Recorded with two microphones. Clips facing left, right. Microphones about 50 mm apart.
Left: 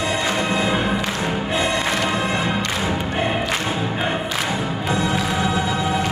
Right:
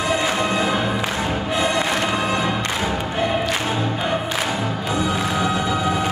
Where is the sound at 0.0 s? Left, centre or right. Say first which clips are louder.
Right 1 dB; centre.